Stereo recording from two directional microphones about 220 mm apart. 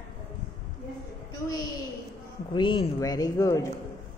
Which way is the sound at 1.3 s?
15° left (ahead or behind).